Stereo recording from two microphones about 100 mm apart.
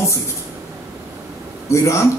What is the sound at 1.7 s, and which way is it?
Speech, 30° left (ahead or behind).